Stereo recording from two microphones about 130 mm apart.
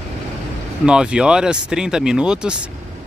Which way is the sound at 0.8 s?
5° right (ahead or behind).